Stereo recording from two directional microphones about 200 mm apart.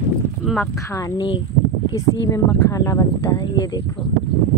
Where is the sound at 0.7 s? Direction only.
15° left (ahead or behind).